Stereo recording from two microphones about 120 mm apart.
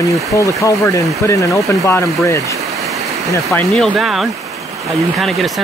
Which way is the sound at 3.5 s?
5° left (ahead or behind).